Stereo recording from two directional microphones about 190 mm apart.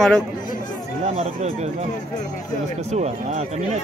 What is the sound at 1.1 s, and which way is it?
Speech, 35° right (ahead or behind).